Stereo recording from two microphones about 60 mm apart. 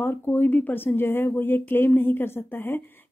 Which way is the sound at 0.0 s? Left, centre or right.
Left.